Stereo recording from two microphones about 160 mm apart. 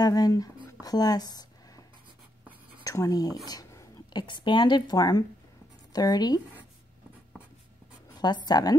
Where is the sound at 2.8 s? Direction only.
20° left (ahead or behind).